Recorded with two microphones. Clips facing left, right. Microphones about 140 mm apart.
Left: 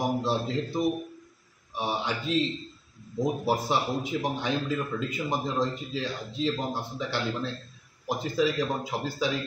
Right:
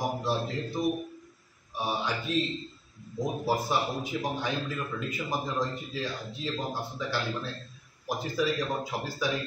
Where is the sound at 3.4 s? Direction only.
20° left (ahead or behind).